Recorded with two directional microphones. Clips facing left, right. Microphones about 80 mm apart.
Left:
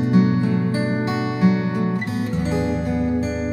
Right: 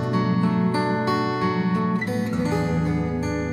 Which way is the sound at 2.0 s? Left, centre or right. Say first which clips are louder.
Even; right.